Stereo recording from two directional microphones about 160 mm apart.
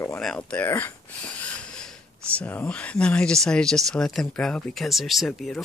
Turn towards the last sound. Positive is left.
turn(degrees=0)  # may be behind; listen again after turning